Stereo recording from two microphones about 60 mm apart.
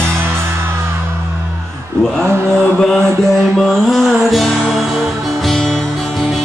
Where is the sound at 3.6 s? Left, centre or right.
Centre.